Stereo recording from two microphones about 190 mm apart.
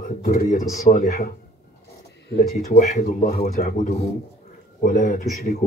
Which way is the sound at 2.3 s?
40° left (ahead or behind).